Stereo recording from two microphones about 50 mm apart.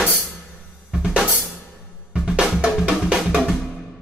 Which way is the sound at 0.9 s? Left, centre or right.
Centre.